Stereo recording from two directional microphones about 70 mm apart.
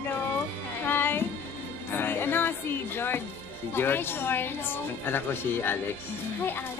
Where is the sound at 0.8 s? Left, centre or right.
Left.